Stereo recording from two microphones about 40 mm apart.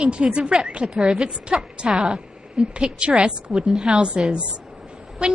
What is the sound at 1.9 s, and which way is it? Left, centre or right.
Speech, centre.